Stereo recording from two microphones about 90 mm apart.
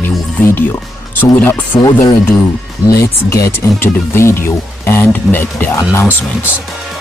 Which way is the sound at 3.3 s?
35° left (ahead or behind).